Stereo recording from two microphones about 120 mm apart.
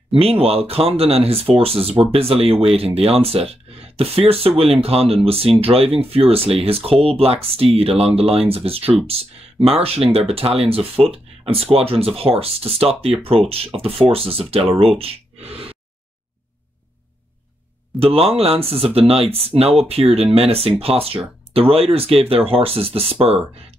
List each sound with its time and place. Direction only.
0.2 s speech: 55° right (ahead or behind)
15.0 s gasp: 55° right (ahead or behind)
17.9 s speech: 55° right (ahead or behind)